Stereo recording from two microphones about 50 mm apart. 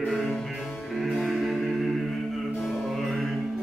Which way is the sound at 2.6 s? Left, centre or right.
Centre.